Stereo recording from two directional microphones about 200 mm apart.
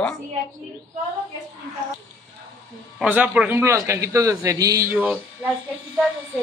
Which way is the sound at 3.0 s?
5° right (ahead or behind).